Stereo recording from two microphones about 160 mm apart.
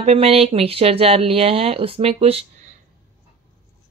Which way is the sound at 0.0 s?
40° right (ahead or behind).